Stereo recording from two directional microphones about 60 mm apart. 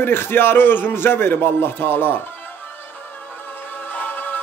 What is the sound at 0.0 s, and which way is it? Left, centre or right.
A man's voice, left.